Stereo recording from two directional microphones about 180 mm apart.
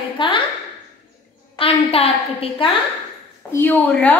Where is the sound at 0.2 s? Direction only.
25° left (ahead or behind).